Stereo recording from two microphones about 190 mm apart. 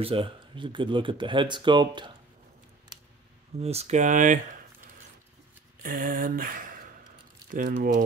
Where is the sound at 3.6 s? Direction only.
35° right (ahead or behind).